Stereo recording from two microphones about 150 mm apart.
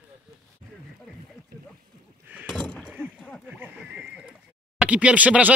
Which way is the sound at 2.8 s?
5° right (ahead or behind).